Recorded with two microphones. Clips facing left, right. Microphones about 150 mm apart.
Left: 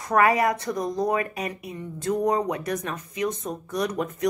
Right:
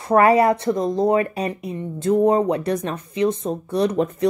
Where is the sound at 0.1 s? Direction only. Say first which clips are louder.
Right 6 dB; 30° right (ahead or behind).